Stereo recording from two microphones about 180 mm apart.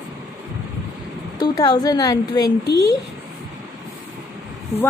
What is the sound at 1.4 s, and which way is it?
A woman's voice, 20° left (ahead or behind).